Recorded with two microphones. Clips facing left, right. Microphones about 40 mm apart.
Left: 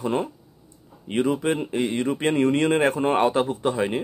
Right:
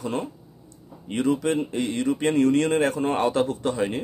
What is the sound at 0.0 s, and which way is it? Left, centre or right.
Speech, left.